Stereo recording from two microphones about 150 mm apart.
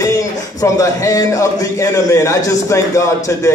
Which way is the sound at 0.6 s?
25° left (ahead or behind).